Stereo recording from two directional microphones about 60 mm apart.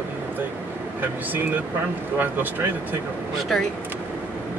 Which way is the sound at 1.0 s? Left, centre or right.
Right.